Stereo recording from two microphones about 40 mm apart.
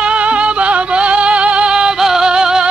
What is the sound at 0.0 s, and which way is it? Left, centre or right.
Music, right.